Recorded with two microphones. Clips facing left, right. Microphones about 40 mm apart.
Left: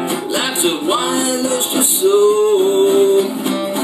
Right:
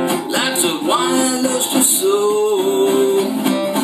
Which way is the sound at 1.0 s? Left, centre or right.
Left.